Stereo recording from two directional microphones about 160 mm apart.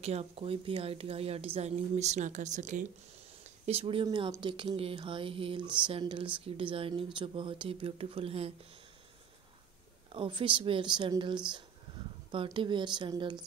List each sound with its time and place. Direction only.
0.0 s speech: 40° right (ahead or behind)
3.6 s speech: 35° right (ahead or behind)
10.1 s speech: 30° right (ahead or behind)